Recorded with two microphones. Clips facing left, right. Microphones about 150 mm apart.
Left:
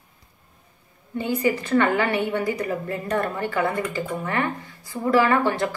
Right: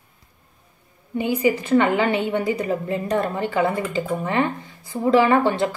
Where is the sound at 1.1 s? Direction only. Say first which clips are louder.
Right 3 dB; 15° right (ahead or behind).